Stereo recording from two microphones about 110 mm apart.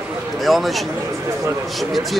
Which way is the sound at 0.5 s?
Centre (ahead or behind).